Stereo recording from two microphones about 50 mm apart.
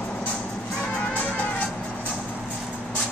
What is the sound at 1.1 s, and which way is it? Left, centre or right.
Music, left.